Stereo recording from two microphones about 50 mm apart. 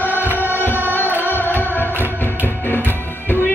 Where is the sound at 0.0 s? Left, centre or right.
Left.